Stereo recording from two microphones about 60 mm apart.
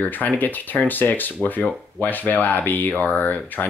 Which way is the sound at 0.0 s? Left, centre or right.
Left.